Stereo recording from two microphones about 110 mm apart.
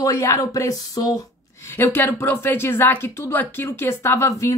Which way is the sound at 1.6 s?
25° left (ahead or behind).